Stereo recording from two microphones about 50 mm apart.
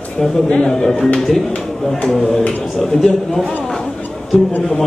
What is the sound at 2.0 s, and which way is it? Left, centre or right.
A man's voice, centre.